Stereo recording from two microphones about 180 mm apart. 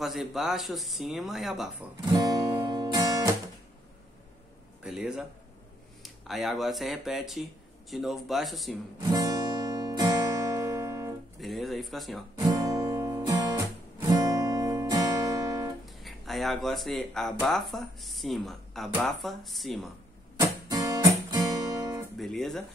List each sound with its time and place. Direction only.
0.0 s speech: centre (ahead or behind)
2.0 s speech: 25° right (ahead or behind)
2.7 s music: 20° right (ahead or behind)
4.8 s a sound: 5° right (ahead or behind)
6.0 s speech: centre (ahead or behind)
9.1 s music: 20° right (ahead or behind)
11.3 s speech: centre (ahead or behind)
12.4 s guitar: 20° right (ahead or behind)
15.8 s speech: centre (ahead or behind)
20.3 s guitar: 20° right (ahead or behind)
22.1 s speech: centre (ahead or behind)